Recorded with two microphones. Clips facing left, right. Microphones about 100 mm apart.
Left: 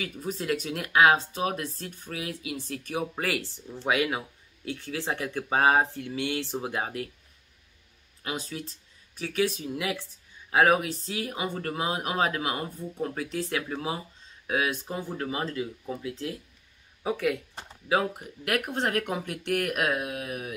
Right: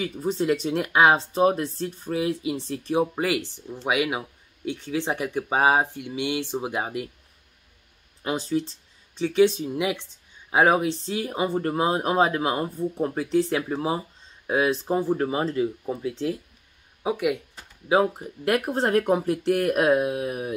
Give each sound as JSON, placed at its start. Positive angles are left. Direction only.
{"t": 0.0, "sound": "speech", "side_deg": -30}
{"t": 8.2, "sound": "speech", "side_deg": -30}
{"t": 17.0, "sound": "speech", "side_deg": -15}